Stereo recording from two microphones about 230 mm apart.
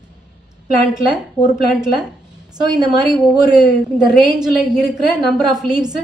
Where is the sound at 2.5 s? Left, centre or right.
Centre.